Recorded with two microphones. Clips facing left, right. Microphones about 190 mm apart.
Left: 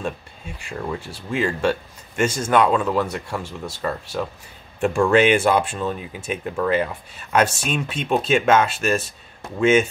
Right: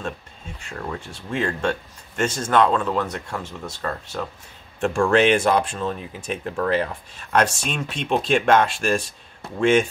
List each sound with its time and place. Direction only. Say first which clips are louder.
0.6 s speech: left 3 dB; 10° left (ahead or behind)